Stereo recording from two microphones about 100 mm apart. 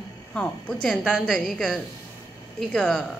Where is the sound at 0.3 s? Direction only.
10° left (ahead or behind).